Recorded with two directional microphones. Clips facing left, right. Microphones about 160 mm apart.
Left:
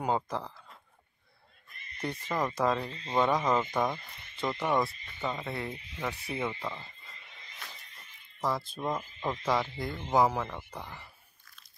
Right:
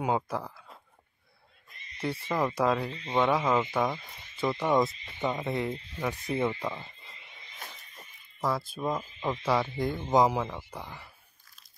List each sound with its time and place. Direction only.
0.0 s speech: 5° right (ahead or behind)
2.0 s speech: 10° right (ahead or behind)
8.4 s speech: 5° right (ahead or behind)